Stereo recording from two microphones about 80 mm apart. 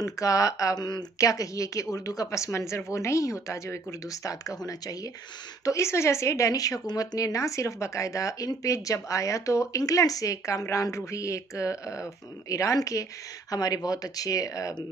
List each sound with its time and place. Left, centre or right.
0.0 s speech: left
5.7 s speech: left